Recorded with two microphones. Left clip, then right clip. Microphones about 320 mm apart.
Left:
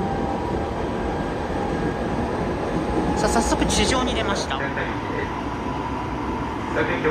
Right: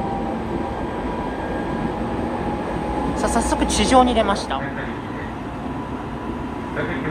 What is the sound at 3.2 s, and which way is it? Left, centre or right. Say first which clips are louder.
Speech: right 1 dB; centre.